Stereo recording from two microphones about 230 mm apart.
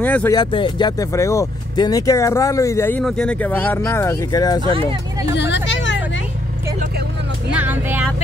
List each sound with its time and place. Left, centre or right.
0.0 s speech: centre
5.3 s a sound: left
7.5 s vehicle: centre